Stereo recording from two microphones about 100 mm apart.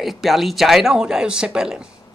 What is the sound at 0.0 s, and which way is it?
Speech, centre (ahead or behind).